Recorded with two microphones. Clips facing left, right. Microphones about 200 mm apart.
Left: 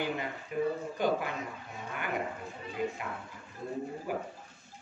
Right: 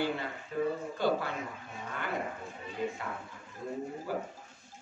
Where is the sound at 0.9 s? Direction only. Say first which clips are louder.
Even; 15° left (ahead or behind).